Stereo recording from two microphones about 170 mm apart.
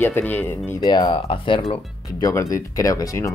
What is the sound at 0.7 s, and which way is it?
Speech, 25° left (ahead or behind).